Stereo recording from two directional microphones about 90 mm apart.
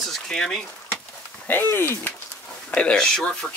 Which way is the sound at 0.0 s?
5° left (ahead or behind).